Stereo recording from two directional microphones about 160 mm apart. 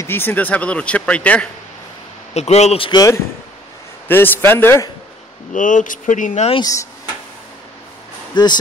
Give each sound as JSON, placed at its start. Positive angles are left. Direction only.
{"t": 0.0, "sound": "speech", "side_deg": 15}
{"t": 2.3, "sound": "a man's voice", "side_deg": 40}
{"t": 2.9, "sound": "speech", "side_deg": 25}
{"t": 4.1, "sound": "speech", "side_deg": 15}
{"t": 5.5, "sound": "speech", "side_deg": 55}
{"t": 6.5, "sound": "speech", "side_deg": 25}
{"t": 8.3, "sound": "speech", "side_deg": 30}